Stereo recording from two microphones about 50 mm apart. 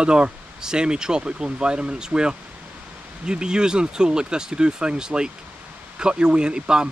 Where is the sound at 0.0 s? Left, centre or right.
Centre.